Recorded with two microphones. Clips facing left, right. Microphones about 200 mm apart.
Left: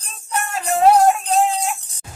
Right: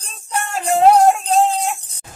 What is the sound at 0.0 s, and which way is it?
Music, 30° right (ahead or behind).